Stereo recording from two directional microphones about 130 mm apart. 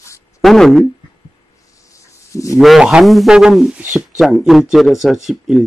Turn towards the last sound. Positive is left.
turn(degrees=0)  # may be behind; listen again after turning